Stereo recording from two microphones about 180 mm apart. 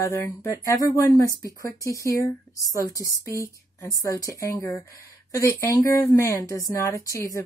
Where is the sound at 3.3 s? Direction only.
15° left (ahead or behind).